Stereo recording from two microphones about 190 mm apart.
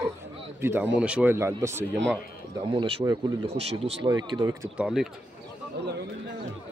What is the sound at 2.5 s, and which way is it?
Speech, 25° right (ahead or behind).